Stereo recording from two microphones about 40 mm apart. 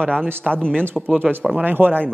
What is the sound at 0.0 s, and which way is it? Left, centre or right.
Speech, left.